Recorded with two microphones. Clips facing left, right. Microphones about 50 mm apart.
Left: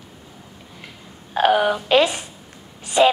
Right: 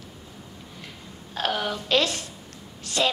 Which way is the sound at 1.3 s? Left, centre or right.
Centre.